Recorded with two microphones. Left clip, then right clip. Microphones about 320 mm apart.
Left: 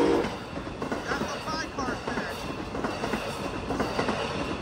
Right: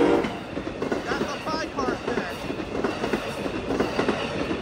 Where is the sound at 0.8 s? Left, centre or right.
Left.